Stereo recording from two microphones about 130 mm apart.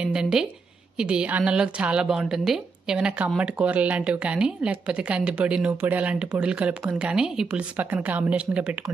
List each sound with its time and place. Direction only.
0.0 s a woman's voice: 5° right (ahead or behind)